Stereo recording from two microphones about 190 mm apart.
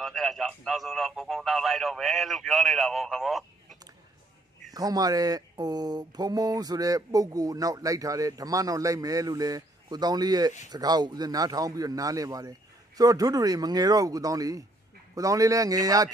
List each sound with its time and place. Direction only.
0.0 s speech: centre (ahead or behind)
4.7 s mantra: 20° right (ahead or behind)
15.1 s a man's voice: 20° right (ahead or behind)